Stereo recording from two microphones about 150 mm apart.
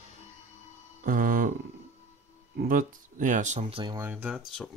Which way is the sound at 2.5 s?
75° right (ahead or behind).